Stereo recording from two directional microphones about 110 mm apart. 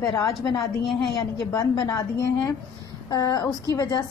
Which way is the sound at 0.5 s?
Centre (ahead or behind).